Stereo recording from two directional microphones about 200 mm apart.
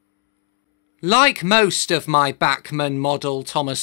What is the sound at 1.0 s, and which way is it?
Speech, 25° left (ahead or behind).